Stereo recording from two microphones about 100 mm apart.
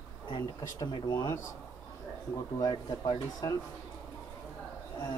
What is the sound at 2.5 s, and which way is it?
Speech, 45° left (ahead or behind).